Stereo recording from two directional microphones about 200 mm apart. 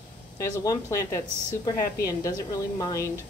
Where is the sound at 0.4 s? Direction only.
15° left (ahead or behind).